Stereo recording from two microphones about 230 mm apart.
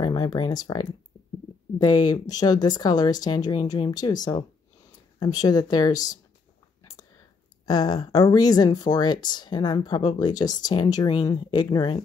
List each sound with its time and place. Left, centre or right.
0.0 s speech: centre
6.8 s a sound: centre
7.6 s speech: centre